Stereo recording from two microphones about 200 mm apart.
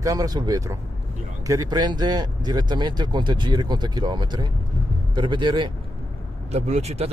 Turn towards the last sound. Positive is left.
turn(degrees=-30)  # may be behind; listen again after turning